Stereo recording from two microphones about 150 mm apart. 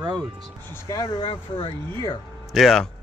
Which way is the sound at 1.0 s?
35° left (ahead or behind).